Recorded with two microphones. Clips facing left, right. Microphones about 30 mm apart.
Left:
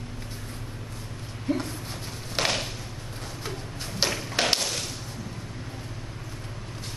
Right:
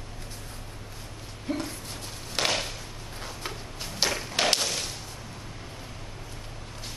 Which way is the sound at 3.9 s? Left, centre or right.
Centre.